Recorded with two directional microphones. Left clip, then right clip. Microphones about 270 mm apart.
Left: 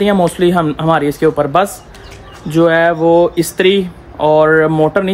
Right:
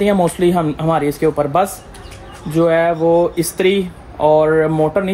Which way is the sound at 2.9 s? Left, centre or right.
Left.